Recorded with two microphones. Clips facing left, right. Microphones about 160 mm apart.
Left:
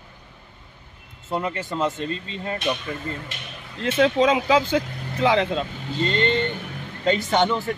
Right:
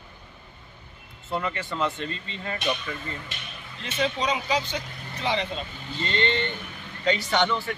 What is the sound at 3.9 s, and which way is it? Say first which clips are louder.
Speech: left 8 dB; 90° left.